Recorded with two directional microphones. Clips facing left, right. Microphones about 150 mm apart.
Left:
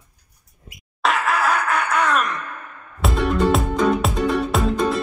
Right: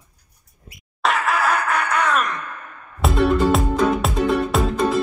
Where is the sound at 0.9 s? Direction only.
Centre (ahead or behind).